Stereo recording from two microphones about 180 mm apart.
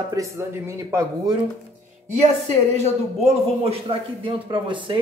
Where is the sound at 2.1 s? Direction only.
40° right (ahead or behind).